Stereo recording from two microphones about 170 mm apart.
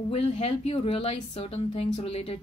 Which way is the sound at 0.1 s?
35° left (ahead or behind).